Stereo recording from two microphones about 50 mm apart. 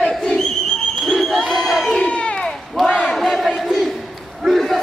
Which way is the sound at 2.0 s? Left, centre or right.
Left.